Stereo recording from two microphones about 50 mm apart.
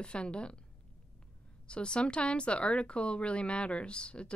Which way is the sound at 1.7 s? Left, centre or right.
Centre.